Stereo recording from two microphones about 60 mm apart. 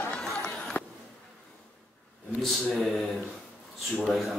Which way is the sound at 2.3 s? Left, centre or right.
Centre.